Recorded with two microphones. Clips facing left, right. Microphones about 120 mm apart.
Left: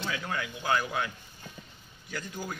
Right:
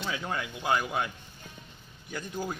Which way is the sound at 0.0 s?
20° right (ahead or behind).